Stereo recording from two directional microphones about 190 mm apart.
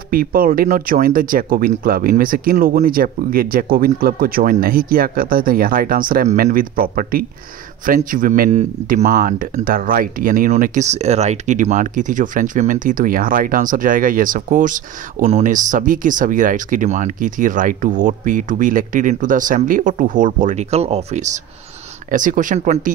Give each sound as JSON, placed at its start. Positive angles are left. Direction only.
{"t": 0.1, "sound": "speech", "side_deg": -50}